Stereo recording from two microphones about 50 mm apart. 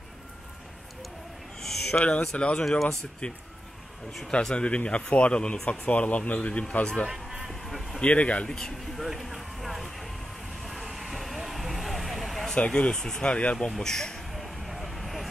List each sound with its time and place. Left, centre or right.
1.6 s a sound: centre
2.0 s speech: left
7.1 s music: centre
7.6 s a sound: centre
8.0 s speech: left
8.5 s speech: centre
8.9 s vehicle: centre
12.5 s speech: left
13.7 s speech: centre
14.3 s vehicle: centre